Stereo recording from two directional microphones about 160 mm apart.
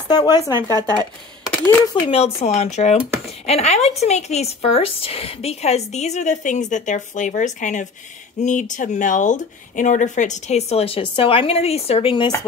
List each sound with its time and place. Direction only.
0.1 s speech: 25° left (ahead or behind)
2.0 s speech: 35° left (ahead or behind)